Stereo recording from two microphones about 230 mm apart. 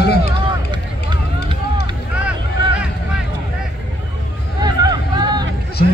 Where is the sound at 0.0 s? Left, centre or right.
Left.